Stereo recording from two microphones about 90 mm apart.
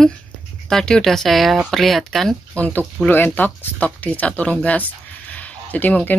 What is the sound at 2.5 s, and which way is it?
Speech, 15° left (ahead or behind).